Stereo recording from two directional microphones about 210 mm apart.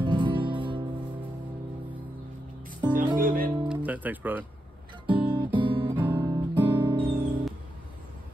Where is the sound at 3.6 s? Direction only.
5° right (ahead or behind).